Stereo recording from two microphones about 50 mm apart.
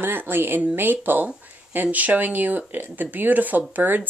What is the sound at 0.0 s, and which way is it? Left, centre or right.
Speech, right.